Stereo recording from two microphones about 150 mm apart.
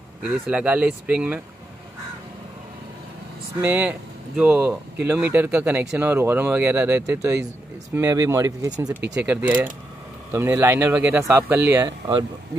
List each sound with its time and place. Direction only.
0.3 s speech: 10° right (ahead or behind)
3.6 s speech: 10° right (ahead or behind)
9.2 s speech: 10° right (ahead or behind)